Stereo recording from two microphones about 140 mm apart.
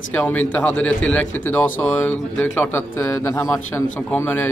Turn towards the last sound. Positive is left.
turn(degrees=15)  # may be behind; listen again after turning